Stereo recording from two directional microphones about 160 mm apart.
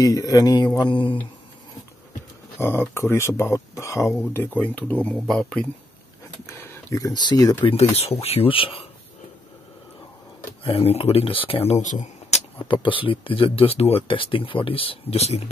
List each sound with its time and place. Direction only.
0.0 s speech: 20° left (ahead or behind)
2.6 s speech: 15° left (ahead or behind)
6.4 s speech: 20° left (ahead or behind)
7.6 s speech: 40° left (ahead or behind)
10.6 s speech: 40° left (ahead or behind)
12.8 s speech: 35° left (ahead or behind)